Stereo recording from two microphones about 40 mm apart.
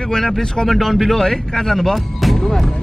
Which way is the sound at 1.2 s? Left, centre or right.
Centre.